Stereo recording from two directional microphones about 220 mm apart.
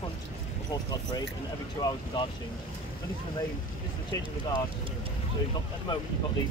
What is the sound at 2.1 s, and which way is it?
Speech, 20° left (ahead or behind).